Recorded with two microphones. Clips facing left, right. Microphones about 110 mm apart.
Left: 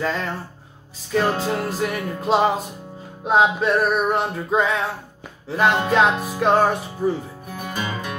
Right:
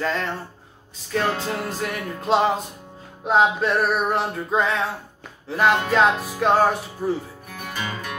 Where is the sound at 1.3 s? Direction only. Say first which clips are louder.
Left 3 dB; 30° left (ahead or behind).